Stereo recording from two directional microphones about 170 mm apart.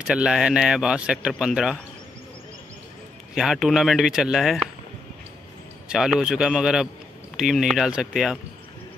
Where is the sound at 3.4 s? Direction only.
Centre (ahead or behind).